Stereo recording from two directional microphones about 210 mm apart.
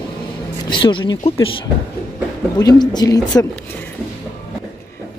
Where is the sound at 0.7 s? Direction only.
25° left (ahead or behind).